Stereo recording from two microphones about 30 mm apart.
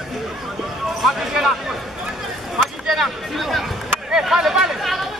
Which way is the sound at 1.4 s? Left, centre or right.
Centre.